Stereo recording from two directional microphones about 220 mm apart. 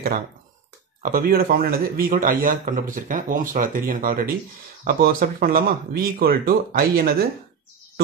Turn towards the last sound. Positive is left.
turn(degrees=-40)  # may be behind; listen again after turning